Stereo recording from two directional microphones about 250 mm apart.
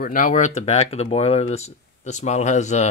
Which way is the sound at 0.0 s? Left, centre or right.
Left.